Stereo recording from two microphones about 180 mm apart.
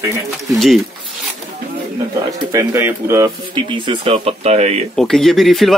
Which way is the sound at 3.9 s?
35° right (ahead or behind).